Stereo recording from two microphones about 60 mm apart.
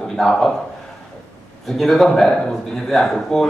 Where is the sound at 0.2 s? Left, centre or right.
Centre.